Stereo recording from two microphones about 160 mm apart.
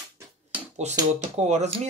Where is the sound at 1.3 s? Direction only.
45° right (ahead or behind).